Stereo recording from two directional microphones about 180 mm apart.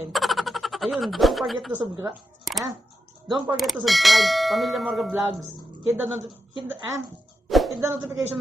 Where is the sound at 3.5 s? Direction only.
Centre (ahead or behind).